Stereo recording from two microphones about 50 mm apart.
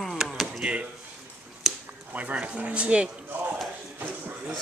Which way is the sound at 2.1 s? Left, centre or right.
Right.